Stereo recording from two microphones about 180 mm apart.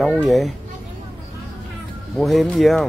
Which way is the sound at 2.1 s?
Centre (ahead or behind).